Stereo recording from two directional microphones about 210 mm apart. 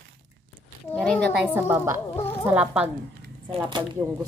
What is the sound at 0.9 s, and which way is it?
Speech, 5° left (ahead or behind).